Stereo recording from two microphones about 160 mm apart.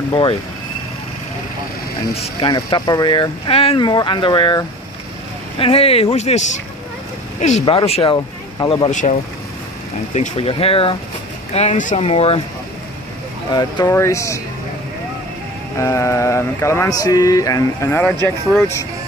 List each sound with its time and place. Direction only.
0.1 s speech: 30° left (ahead or behind)
2.4 s speech: 30° left (ahead or behind); by 7.6 s 50° left (ahead or behind)
7.6 s speech: 35° left (ahead or behind)
10.1 s speech: 40° left (ahead or behind)
11.5 s speech: 50° left (ahead or behind)
13.5 s speech: 25° left (ahead or behind)
15.8 s a sound: 20° left (ahead or behind)